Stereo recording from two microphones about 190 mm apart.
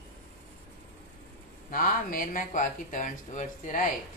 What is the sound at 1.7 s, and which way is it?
Speech, 45° left (ahead or behind).